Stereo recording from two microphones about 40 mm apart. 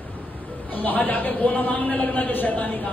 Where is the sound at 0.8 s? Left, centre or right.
Left.